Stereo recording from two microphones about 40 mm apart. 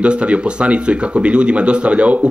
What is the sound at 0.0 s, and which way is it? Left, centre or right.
A man's voice, right.